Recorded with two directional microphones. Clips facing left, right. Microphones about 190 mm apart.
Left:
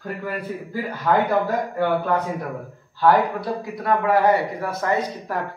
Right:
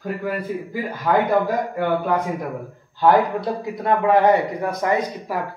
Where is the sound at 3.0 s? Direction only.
20° right (ahead or behind).